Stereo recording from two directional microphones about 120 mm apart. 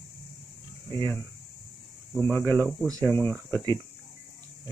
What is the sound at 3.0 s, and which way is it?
Speech, 15° left (ahead or behind).